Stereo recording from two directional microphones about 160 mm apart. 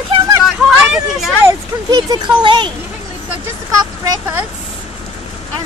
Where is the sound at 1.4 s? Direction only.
25° right (ahead or behind).